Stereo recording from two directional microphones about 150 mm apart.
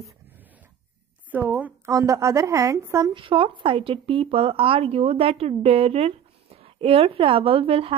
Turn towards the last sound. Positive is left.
turn(degrees=-40)  # may be behind; listen again after turning